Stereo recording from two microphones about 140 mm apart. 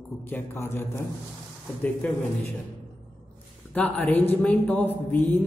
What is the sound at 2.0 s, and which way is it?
Speech, 10° left (ahead or behind).